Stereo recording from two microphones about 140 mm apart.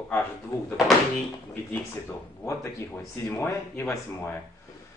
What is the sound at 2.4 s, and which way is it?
Speech, 20° left (ahead or behind).